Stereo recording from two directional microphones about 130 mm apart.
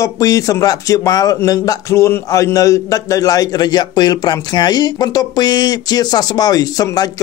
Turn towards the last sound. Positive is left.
turn(degrees=30)  # may be behind; listen again after turning